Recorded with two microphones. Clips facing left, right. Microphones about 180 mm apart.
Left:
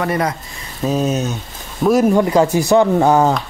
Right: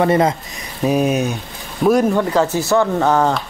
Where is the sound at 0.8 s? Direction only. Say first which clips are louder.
Right 2 dB; 15° right (ahead or behind).